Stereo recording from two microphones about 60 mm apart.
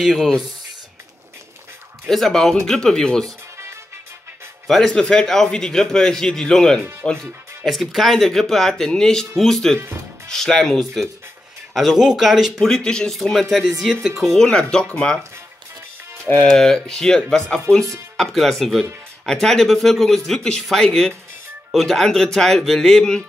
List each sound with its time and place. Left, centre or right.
0.0 s speech: centre
2.0 s speech: centre
4.6 s speech: centre
9.8 s music: right
10.3 s speech: centre
11.7 s speech: centre
12.6 s speech: centre
14.3 s speech: centre
16.4 s speech: centre
18.1 s speech: centre